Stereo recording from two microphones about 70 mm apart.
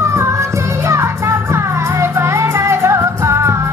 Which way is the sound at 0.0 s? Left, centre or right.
Right.